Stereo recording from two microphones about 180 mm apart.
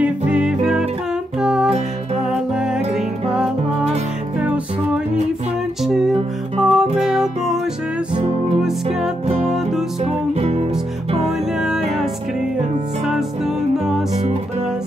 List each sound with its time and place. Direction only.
0.0 s music: 5° right (ahead or behind)
4.4 s music: 5° right (ahead or behind)
6.6 s music: 5° right (ahead or behind)
8.1 s music: 35° right (ahead or behind)
9.5 s music: centre (ahead or behind)
10.0 s music: 35° right (ahead or behind)
11.2 s music: centre (ahead or behind)